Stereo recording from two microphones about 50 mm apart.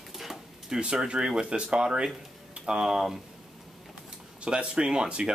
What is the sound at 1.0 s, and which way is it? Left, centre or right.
Speech, centre.